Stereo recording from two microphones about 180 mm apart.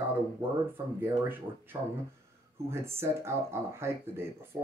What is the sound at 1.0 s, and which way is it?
Speech, 10° right (ahead or behind).